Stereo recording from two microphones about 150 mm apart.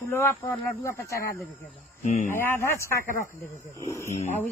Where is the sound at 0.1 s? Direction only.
20° left (ahead or behind).